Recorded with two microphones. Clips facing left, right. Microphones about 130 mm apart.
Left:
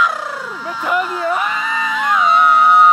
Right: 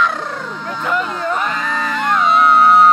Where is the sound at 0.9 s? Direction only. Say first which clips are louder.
Left 2 dB; 5° left (ahead or behind).